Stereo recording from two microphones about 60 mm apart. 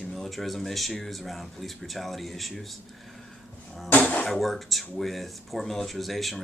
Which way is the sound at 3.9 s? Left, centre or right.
Left.